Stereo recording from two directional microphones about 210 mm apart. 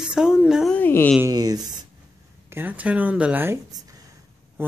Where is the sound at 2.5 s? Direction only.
5° right (ahead or behind).